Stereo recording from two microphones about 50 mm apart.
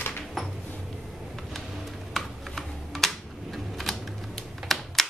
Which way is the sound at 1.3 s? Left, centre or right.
Centre.